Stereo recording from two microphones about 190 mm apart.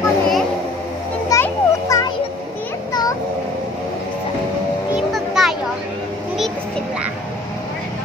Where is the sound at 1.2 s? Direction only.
15° left (ahead or behind).